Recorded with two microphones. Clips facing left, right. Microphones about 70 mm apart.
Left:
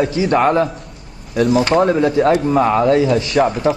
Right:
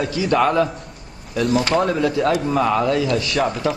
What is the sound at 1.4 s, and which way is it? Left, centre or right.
Speech, centre.